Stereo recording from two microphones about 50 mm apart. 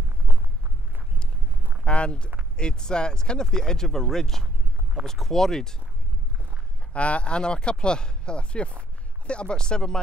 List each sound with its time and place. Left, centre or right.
1.9 s speech: left
6.9 s speech: left